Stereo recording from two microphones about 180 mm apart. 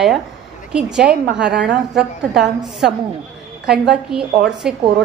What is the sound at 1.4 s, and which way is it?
Speech, 65° right (ahead or behind).